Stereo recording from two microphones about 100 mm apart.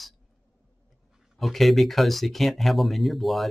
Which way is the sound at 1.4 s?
Centre (ahead or behind).